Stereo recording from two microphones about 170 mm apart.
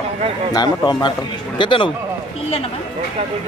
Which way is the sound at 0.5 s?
25° left (ahead or behind).